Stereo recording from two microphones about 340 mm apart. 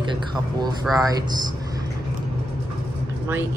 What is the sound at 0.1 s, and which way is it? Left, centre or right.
Speech, centre.